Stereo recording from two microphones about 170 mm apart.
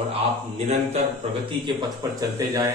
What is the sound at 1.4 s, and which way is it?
A man's voice, 25° right (ahead or behind).